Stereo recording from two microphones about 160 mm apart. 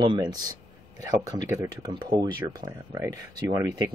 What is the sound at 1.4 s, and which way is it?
Speech, 20° right (ahead or behind).